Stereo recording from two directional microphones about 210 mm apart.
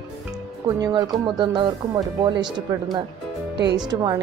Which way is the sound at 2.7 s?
15° right (ahead or behind).